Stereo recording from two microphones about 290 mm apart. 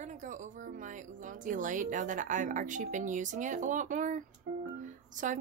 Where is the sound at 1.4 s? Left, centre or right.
Right.